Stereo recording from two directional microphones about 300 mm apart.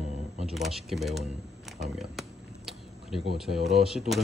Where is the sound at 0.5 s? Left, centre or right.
Centre.